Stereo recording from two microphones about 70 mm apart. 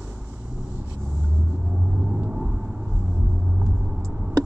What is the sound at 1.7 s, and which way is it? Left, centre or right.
Vehicle, centre.